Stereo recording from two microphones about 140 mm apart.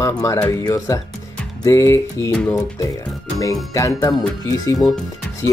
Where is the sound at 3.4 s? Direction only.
25° left (ahead or behind).